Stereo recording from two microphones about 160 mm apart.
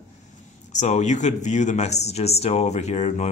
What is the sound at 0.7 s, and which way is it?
Speech, 45° left (ahead or behind).